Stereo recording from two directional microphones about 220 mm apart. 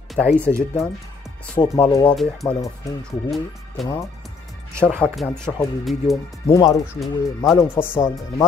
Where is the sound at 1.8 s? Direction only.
15° left (ahead or behind).